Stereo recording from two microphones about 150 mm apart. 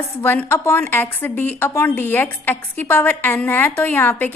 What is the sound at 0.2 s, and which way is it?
A woman's voice, 15° left (ahead or behind).